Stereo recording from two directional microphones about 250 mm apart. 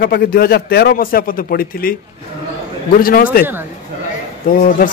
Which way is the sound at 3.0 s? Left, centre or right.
Left.